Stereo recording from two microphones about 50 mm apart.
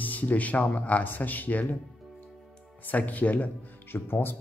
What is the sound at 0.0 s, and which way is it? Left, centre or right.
Speech, left.